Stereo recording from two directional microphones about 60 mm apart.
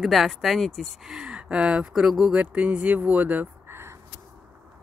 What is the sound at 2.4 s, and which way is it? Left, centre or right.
Speech, right.